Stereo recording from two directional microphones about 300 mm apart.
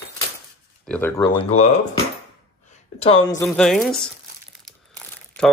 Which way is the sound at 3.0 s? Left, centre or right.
Centre.